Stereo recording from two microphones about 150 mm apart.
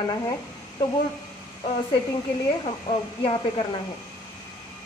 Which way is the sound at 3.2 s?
35° left (ahead or behind).